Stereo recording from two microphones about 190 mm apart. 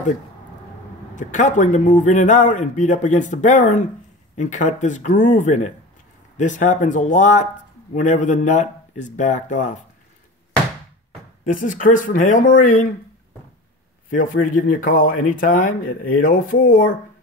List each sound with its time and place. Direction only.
1.1 s a man's voice: 40° left (ahead or behind)
11.4 s speech: 40° left (ahead or behind)
14.4 s speech: 45° left (ahead or behind)